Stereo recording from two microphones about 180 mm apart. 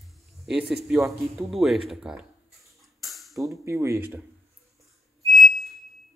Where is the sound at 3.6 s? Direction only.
15° right (ahead or behind).